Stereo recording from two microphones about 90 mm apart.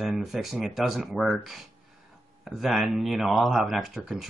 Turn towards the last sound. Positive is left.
turn(degrees=-5)  # may be behind; listen again after turning